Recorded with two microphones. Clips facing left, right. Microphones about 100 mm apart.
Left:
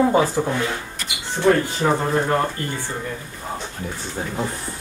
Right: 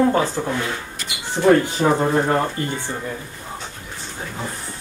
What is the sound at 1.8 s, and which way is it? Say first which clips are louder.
Speech: right 2 dB; 30° right (ahead or behind).